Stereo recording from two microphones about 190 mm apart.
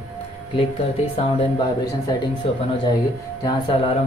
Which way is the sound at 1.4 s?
25° left (ahead or behind).